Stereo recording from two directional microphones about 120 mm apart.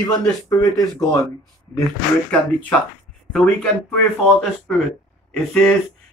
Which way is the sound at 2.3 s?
10° left (ahead or behind).